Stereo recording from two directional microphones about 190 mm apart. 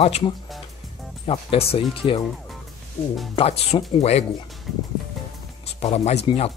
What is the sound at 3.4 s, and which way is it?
Speech, 30° left (ahead or behind).